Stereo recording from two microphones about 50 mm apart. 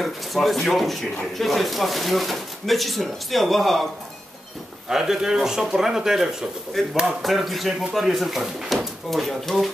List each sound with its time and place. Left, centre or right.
0.0 s speech: centre
4.8 s speech: centre
6.8 s speech: centre